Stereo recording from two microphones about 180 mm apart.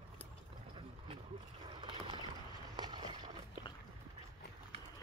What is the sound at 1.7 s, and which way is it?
Rowboat, 25° right (ahead or behind).